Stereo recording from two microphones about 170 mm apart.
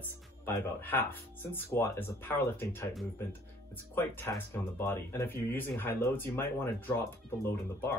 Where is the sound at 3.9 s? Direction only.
15° left (ahead or behind).